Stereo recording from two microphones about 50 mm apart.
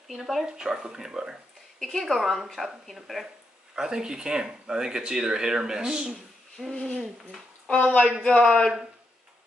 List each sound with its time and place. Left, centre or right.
0.1 s a woman's voice: centre
1.8 s a woman's voice: centre
3.7 s speech: centre
6.7 s speech: centre
7.0 s a woman's voice: centre
7.8 s speech: left
8.2 s a man's voice: centre